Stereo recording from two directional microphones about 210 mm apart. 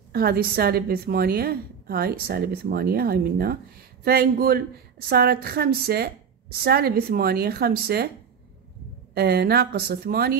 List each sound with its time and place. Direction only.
0.1 s a woman's voice: 45° right (ahead or behind)
9.1 s a woman's voice: 50° right (ahead or behind)